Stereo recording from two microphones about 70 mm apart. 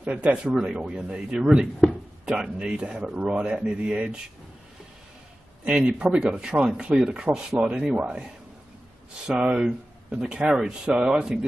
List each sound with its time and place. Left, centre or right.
0.0 s speech: centre
5.7 s speech: centre
9.3 s speech: centre